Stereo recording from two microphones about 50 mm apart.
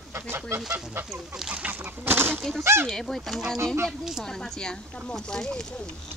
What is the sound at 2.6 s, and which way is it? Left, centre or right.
Speech, right.